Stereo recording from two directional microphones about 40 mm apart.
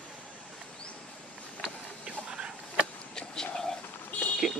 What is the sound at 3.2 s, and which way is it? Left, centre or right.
Whispering, centre.